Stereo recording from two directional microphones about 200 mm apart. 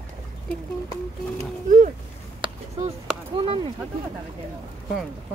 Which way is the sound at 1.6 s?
40° right (ahead or behind).